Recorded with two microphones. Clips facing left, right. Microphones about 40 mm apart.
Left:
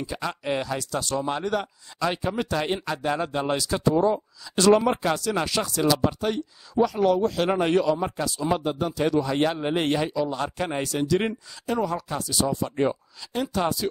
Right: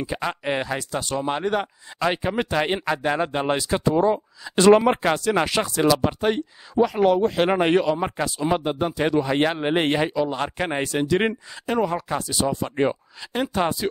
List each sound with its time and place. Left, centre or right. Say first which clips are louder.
0.0 s speech: right 3 dB; right